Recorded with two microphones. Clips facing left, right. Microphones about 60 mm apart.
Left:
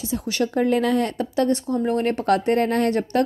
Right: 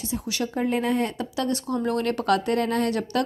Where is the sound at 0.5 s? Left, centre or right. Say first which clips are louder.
Left 4 dB; left.